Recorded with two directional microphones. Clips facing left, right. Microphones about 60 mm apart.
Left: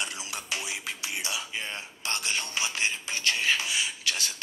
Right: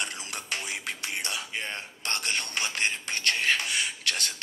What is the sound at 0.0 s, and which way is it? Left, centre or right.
Music, right.